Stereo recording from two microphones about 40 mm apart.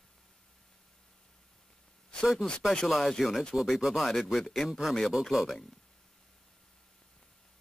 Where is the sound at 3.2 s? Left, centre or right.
Centre.